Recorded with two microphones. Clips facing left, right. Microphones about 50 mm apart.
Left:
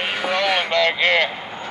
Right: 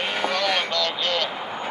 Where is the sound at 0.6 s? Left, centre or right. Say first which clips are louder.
Left 7 dB; left.